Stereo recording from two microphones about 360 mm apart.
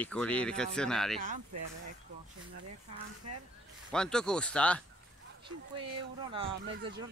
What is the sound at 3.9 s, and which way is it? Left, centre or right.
Speech, centre.